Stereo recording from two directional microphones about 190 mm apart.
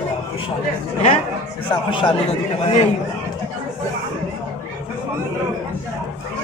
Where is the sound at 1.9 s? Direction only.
25° left (ahead or behind).